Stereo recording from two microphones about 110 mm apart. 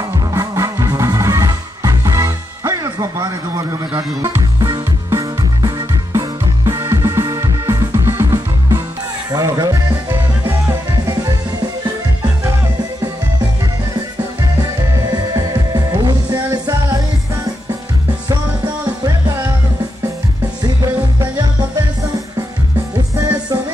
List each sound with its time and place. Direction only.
0.1 s music: 30° right (ahead or behind)
14.6 s music: 35° right (ahead or behind)
19.0 s music: 35° right (ahead or behind)
20.6 s music: 40° right (ahead or behind)
23.1 s music: 30° right (ahead or behind)